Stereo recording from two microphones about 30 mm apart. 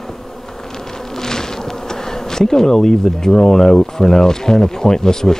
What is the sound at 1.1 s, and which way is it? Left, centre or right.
Bee, centre.